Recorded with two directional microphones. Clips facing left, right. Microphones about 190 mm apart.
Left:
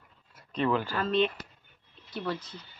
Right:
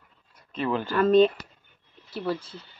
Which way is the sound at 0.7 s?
20° right (ahead or behind).